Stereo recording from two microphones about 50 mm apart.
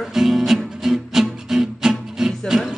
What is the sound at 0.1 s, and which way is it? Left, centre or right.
Music, centre.